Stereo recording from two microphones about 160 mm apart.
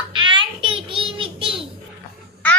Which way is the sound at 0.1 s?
30° right (ahead or behind).